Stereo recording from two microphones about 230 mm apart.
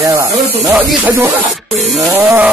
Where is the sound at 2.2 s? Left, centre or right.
Centre.